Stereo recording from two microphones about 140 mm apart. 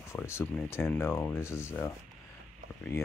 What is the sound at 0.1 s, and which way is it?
Speech, 20° left (ahead or behind).